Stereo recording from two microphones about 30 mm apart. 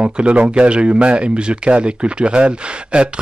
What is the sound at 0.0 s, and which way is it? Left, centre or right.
Speech, right.